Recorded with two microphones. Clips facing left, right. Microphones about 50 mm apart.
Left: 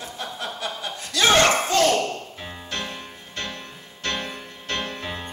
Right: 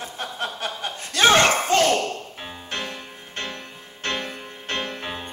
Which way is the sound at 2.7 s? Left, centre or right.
Right.